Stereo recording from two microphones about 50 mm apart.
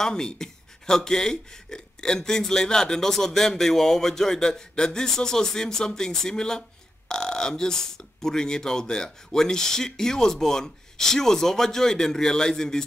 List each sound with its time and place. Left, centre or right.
0.0 s speech: centre